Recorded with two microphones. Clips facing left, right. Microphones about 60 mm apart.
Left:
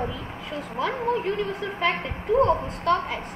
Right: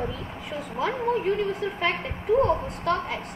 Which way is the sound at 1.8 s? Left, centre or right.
Centre.